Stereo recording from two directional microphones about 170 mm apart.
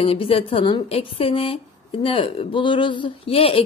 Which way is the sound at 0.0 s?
35° left (ahead or behind).